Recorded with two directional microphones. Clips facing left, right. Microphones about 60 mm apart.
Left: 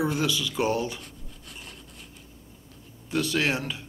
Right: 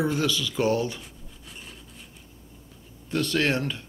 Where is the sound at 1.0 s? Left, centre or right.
Centre.